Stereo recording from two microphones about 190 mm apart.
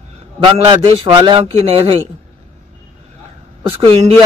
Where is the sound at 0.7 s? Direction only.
25° right (ahead or behind).